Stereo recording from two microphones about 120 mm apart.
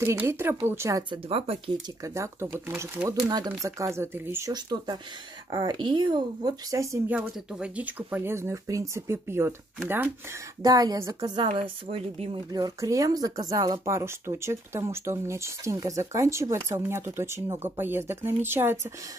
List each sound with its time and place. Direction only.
0.0 s speech: 20° right (ahead or behind)
1.3 s speech: 55° right (ahead or behind)
2.1 s speech: 25° right (ahead or behind)
4.5 s speech: 35° right (ahead or behind)
7.1 s speech: 10° right (ahead or behind)
10.6 s speech: 30° right (ahead or behind)
11.5 s speech: 50° right (ahead or behind)
12.5 s speech: 30° right (ahead or behind)